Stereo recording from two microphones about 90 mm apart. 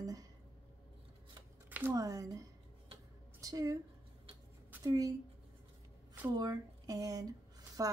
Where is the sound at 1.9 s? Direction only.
40° right (ahead or behind).